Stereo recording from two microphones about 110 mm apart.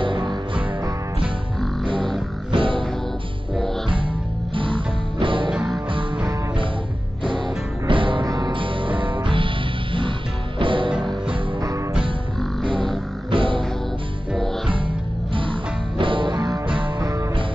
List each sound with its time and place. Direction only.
0.0 s music: 50° right (ahead or behind)
2.0 s music: 5° left (ahead or behind)
2.5 s music: 50° right (ahead or behind)
4.6 s music: 50° right (ahead or behind)
5.5 s music: 5° right (ahead or behind)
7.2 s music: 50° right (ahead or behind)
8.3 s music: 35° right (ahead or behind)
8.5 s music: 50° right (ahead or behind)
10.6 s music: 50° right (ahead or behind)
13.3 s music: 50° right (ahead or behind)
16.0 s music: 50° right (ahead or behind)